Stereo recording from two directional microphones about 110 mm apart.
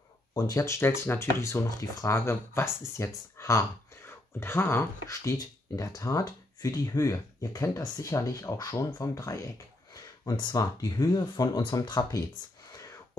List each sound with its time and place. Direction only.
0.3 s speech: 35° left (ahead or behind)
3.3 s a sound: 25° left (ahead or behind)
5.8 s speech: 30° left (ahead or behind)